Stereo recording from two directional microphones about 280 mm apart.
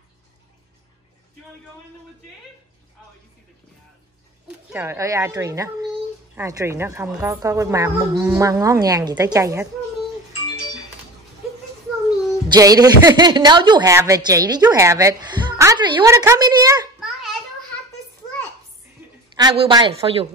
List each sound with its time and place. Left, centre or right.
4.7 s a woman's voice: centre
12.4 s a woman's voice: centre
17.0 s a sound: centre
19.3 s a woman's voice: centre